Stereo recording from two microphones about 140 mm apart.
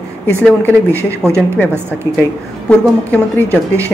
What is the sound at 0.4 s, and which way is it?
Speech, 10° left (ahead or behind).